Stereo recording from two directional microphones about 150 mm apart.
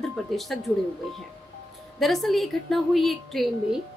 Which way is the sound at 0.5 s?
Centre (ahead or behind).